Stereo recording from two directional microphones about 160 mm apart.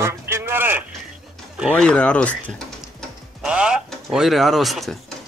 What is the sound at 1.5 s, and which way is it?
Speech, 5° left (ahead or behind).